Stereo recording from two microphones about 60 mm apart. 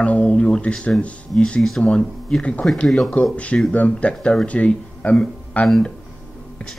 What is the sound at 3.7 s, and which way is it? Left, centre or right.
Speech, left.